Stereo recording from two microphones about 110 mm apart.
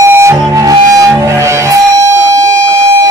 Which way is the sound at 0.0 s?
25° right (ahead or behind).